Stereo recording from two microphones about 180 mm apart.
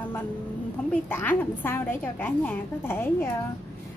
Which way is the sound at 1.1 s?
10° left (ahead or behind).